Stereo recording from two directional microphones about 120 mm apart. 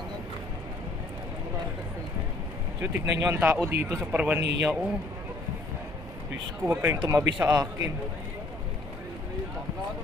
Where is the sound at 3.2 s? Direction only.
20° right (ahead or behind).